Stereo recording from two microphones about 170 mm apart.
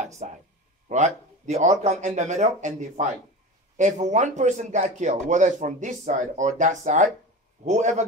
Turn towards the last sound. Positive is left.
turn(degrees=-45)  # may be behind; listen again after turning